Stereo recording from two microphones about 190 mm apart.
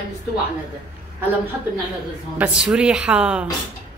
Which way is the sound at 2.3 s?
5° right (ahead or behind).